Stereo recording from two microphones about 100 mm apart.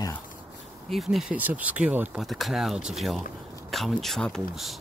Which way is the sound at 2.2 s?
Centre (ahead or behind).